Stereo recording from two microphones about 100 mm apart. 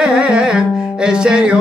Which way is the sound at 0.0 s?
10° right (ahead or behind).